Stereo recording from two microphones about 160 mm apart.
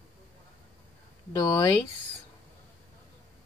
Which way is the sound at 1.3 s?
25° left (ahead or behind).